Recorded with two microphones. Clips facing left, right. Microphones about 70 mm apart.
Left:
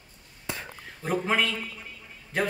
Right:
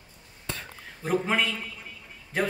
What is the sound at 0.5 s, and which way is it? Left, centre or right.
Whispering, centre.